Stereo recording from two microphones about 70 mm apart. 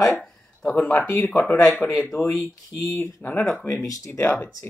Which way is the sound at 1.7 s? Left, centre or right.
Left.